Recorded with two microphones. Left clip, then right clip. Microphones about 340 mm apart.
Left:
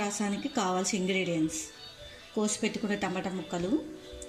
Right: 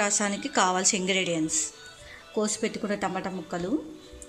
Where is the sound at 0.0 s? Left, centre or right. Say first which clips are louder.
Right 6 dB; centre.